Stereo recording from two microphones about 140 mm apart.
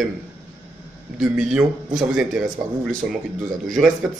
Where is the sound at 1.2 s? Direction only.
5° right (ahead or behind).